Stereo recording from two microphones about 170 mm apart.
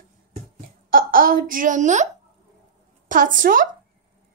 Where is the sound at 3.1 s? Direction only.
50° right (ahead or behind).